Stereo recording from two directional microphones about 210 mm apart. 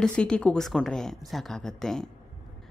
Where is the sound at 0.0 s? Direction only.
5° left (ahead or behind).